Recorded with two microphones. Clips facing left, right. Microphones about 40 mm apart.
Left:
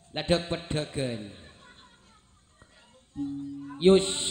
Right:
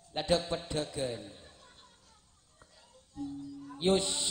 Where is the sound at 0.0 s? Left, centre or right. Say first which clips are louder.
Left 3 dB; left.